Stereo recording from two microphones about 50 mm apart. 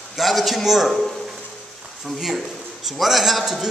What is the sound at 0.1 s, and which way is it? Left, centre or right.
A man's voice, centre.